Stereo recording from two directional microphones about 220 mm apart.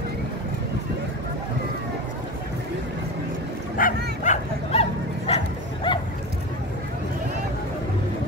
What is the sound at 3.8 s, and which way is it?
Bow-wow, 40° left (ahead or behind).